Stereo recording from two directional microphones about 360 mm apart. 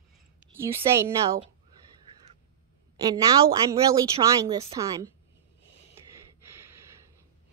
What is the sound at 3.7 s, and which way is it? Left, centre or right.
A woman's voice, centre.